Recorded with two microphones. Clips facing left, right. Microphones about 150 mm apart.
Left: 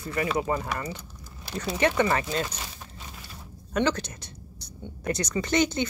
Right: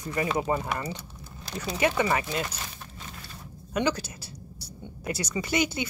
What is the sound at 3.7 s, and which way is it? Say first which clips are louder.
Speech: left 1 dB; 10° right (ahead or behind).